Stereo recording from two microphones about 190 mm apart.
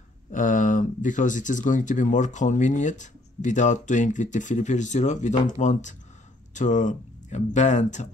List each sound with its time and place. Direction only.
0.3 s speech: 45° left (ahead or behind)